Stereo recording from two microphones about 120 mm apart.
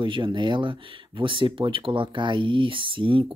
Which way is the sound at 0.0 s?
40° right (ahead or behind).